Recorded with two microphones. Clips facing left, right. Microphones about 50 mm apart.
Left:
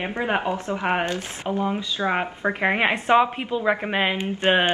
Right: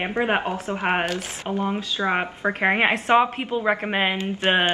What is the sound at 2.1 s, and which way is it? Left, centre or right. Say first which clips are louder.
Speech: even; centre.